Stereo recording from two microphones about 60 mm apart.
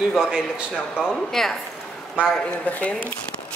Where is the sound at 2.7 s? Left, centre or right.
Left.